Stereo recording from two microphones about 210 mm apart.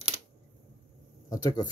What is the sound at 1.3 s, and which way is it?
Speech, 20° left (ahead or behind).